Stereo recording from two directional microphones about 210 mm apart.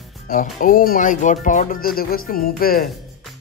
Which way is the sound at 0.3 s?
40° left (ahead or behind).